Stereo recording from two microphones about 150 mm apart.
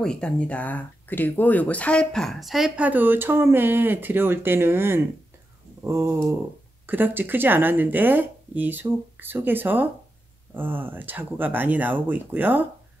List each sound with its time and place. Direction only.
0.0 s speech: 5° left (ahead or behind); by 5.0 s 15° right (ahead or behind)
5.8 s a sound: 20° right (ahead or behind)
6.9 s speech: 15° right (ahead or behind)